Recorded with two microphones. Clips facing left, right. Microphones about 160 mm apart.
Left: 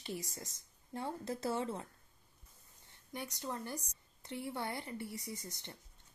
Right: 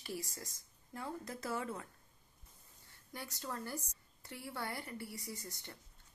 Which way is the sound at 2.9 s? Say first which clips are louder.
Left 4 dB; 20° left (ahead or behind).